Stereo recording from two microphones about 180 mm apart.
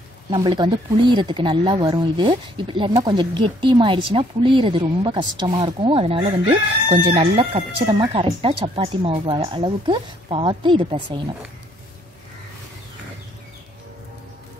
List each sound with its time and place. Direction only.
0.3 s speech: 25° right (ahead or behind)